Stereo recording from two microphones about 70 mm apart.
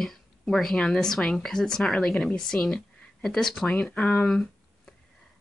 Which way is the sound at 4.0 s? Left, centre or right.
Centre.